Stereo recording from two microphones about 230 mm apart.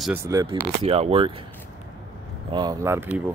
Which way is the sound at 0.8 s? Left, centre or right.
Right.